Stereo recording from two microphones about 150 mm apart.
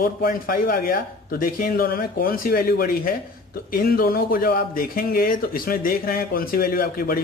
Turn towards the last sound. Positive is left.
turn(degrees=80)